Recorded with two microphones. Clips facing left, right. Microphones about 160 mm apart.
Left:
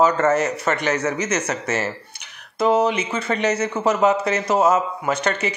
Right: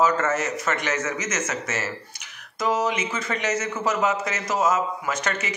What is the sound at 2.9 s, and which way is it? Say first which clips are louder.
Speech: left 4 dB; 30° left (ahead or behind).